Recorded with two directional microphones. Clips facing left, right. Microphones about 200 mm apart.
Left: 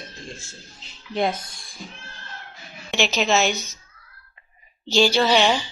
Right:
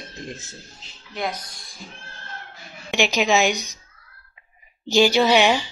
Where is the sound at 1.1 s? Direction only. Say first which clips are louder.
Left 5 dB; 30° left (ahead or behind).